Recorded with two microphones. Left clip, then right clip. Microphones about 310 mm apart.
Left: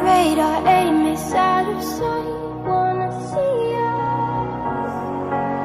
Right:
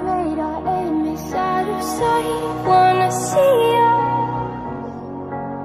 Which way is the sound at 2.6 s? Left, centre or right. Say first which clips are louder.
Right 6 dB; right.